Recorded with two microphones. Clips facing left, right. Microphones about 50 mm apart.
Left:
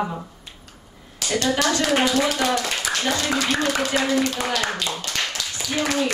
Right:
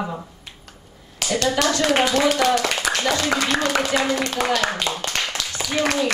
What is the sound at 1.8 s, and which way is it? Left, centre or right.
Speech, right.